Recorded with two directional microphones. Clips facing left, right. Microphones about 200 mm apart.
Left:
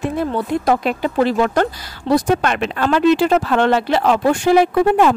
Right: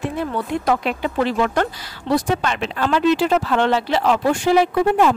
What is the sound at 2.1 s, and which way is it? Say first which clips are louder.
Speech: left 4 dB; 50° left (ahead or behind).